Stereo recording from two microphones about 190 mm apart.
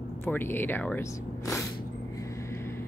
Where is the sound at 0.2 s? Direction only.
10° left (ahead or behind).